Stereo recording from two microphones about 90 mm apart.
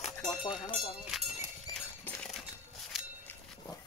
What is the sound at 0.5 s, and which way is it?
Speech, 65° left (ahead or behind).